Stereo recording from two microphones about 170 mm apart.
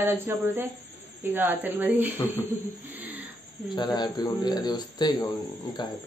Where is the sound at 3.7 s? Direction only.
25° left (ahead or behind).